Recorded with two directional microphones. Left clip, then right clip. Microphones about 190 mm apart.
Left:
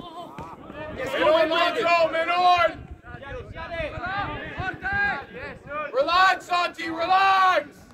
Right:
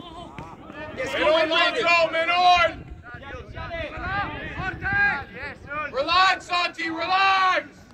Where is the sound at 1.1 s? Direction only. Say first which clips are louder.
Even; 45° left (ahead or behind).